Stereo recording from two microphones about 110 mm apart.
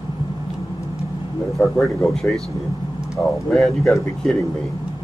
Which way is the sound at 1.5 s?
Centre (ahead or behind).